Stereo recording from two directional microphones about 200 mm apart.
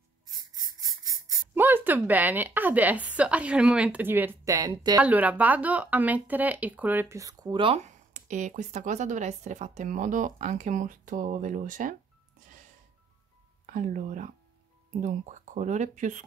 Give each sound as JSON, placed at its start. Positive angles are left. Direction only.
{"t": 0.4, "sound": "a sound", "side_deg": -20}
{"t": 1.2, "sound": "speech", "side_deg": -15}
{"t": 5.0, "sound": "speech", "side_deg": -10}
{"t": 13.7, "sound": "speech", "side_deg": -40}